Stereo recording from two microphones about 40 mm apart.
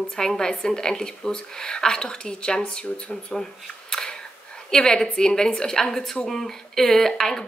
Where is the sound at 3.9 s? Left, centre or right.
Centre.